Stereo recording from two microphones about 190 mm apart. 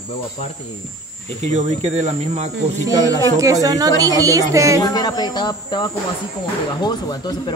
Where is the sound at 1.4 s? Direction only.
35° right (ahead or behind).